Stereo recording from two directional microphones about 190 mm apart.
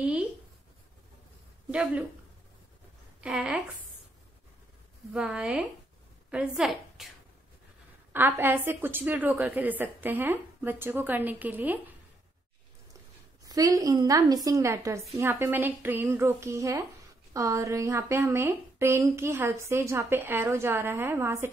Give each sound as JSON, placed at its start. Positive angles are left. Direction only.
{"t": 1.7, "sound": "a woman's voice", "side_deg": -5}
{"t": 3.2, "sound": "a woman's voice", "side_deg": -5}
{"t": 5.1, "sound": "a woman's voice", "side_deg": -5}
{"t": 8.1, "sound": "a woman's voice", "side_deg": -10}
{"t": 13.4, "sound": "a woman's voice", "side_deg": -20}